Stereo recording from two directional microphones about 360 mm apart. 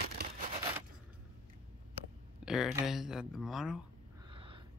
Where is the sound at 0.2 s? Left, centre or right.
Right.